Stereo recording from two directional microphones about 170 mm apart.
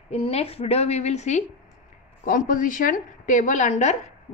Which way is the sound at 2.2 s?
50° left (ahead or behind).